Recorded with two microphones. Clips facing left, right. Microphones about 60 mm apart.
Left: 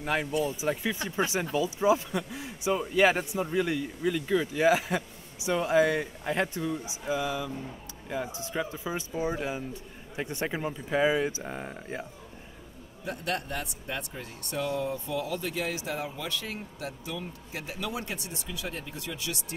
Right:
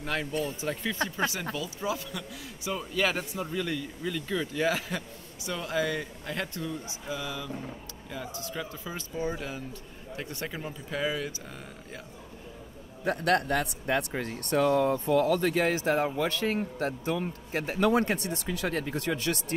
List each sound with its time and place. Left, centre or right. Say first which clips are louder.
0.0 s speech: left 3 dB; centre
1.1 s speech: left 3 dB; left
13.0 s speech: right 7 dB; right